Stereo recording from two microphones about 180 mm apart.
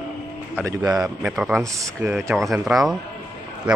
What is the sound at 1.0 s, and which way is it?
Speech, centre (ahead or behind).